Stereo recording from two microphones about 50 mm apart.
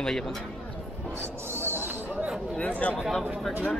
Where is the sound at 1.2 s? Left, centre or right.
Right.